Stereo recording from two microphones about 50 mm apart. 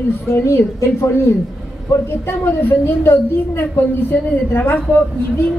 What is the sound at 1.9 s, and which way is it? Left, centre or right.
A woman's voice, left.